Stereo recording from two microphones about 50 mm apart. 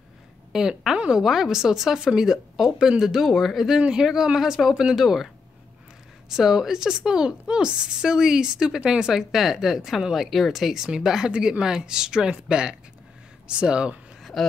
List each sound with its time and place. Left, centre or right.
0.5 s a woman's voice: centre
0.9 s speech: right
1.2 s a woman's voice: centre